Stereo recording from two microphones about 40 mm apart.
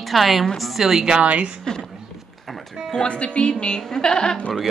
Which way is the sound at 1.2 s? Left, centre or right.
Right.